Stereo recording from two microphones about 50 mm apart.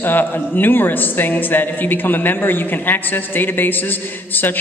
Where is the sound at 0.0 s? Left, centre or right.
Left.